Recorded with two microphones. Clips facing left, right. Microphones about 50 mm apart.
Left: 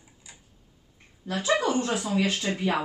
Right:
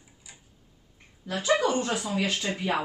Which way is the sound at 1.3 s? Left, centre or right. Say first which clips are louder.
Even; centre.